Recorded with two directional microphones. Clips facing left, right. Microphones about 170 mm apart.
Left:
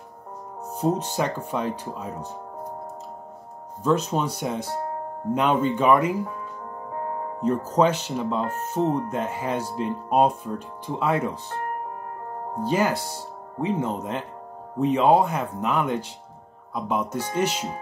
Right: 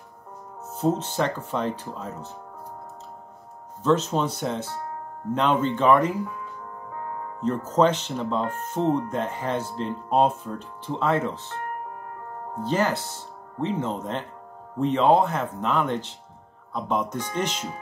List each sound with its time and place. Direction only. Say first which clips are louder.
0.7 s speech: even; 10° left (ahead or behind)
3.8 s speech: right 1 dB; 10° left (ahead or behind)
6.9 s music: left 4 dB; 35° left (ahead or behind)
7.7 s speech: right 2 dB; 10° left (ahead or behind)
12.6 s speech: left 1 dB; 10° left (ahead or behind)